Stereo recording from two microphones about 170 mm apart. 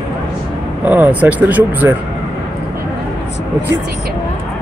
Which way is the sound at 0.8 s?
10° right (ahead or behind).